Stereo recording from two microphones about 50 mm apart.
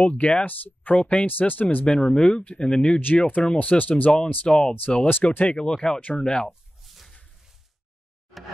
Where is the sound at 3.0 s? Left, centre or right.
Left.